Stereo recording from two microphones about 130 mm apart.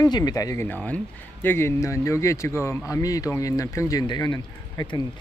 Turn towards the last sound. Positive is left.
turn(degrees=35)  # may be behind; listen again after turning